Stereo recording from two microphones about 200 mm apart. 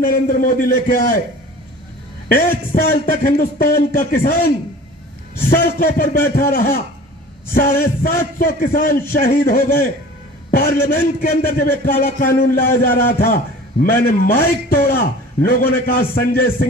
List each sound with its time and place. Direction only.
0.0 s a man's voice: 45° left (ahead or behind)
2.2 s a man's voice: 50° left (ahead or behind)
5.5 s a man's voice: 45° left (ahead or behind)
7.8 s a man's voice: 45° left (ahead or behind)